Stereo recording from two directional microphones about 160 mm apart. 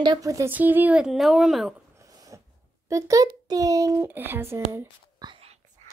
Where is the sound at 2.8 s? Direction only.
20° right (ahead or behind).